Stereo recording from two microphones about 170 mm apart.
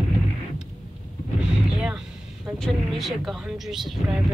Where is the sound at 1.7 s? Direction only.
5° right (ahead or behind).